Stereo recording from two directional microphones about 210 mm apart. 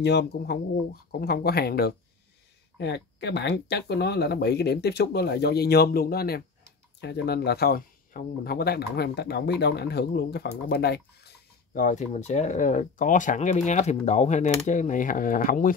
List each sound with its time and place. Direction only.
0.0 s speech: 50° left (ahead or behind)